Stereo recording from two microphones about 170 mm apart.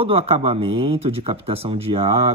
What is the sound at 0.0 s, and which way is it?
Speech, 35° right (ahead or behind).